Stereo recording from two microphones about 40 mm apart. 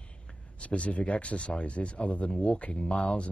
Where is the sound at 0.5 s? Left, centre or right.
Left.